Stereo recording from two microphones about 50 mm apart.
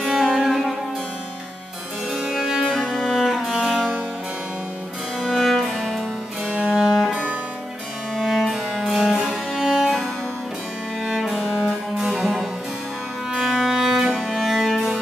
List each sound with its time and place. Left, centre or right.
0.0 s music: centre
2.3 s music: centre
2.6 s music: centre
3.1 s music: centre
5.2 s music: centre
6.8 s music: centre
8.2 s music: centre
11.1 s music: centre
12.0 s harpsichord: right
13.3 s music: centre